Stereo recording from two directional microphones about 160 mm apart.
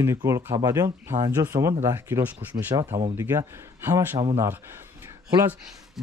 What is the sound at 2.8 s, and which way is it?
Speech, 45° right (ahead or behind).